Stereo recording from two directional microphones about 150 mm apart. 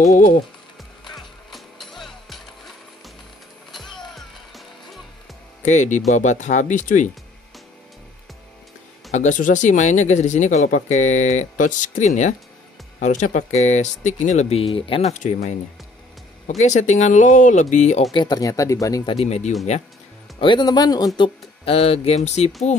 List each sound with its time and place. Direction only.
0.1 s speech: 70° left (ahead or behind)
1.0 s music: centre (ahead or behind)
3.7 s music: centre (ahead or behind)
5.6 s speech: 55° left (ahead or behind)
9.1 s speech: 55° left (ahead or behind)
18.1 s speech: 30° left (ahead or behind)
19.0 s speech: 45° left (ahead or behind)
20.3 s speech: 30° left (ahead or behind)
21.2 s speech: 40° left (ahead or behind)